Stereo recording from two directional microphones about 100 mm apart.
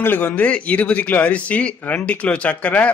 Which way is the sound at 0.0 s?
15° left (ahead or behind).